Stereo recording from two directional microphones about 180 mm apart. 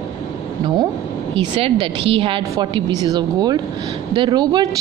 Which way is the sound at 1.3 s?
30° right (ahead or behind).